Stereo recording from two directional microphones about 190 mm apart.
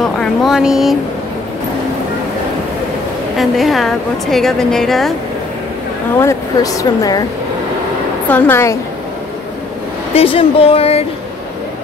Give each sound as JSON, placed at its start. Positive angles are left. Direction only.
{"t": 0.0, "sound": "a woman's voice", "side_deg": 0}
{"t": 3.3, "sound": "a woman's voice", "side_deg": 0}
{"t": 6.2, "sound": "speech", "side_deg": 15}
{"t": 8.3, "sound": "speech", "side_deg": 10}
{"t": 10.1, "sound": "speech", "side_deg": 30}